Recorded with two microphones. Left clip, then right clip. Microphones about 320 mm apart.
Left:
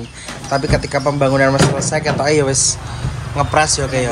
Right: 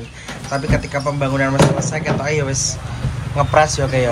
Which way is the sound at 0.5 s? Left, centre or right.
Centre.